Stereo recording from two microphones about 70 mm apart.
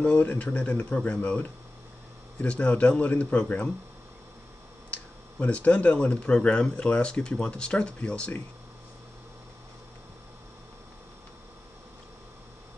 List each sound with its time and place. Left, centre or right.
0.0 s speech: left
4.9 s speech: centre